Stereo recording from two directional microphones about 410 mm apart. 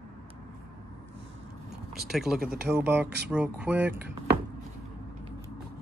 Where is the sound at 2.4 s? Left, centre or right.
Right.